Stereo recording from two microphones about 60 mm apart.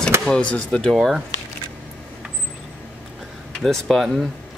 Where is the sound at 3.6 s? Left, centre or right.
Centre.